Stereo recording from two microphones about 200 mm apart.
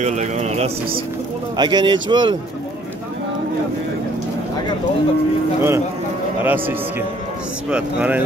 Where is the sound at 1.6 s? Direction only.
20° right (ahead or behind).